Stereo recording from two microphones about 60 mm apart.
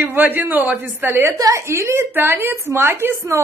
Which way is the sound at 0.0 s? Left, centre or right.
Right.